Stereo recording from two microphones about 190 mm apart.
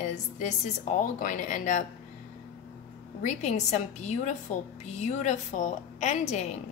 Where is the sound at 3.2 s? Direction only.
35° left (ahead or behind).